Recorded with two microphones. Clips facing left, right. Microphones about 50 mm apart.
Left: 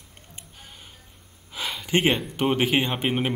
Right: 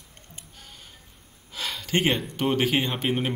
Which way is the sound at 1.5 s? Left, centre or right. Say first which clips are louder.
Left 2 dB; centre.